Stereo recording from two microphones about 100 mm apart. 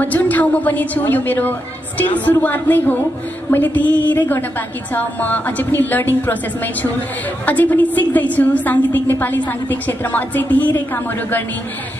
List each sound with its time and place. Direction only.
0.0 s a woman's voice: 15° left (ahead or behind)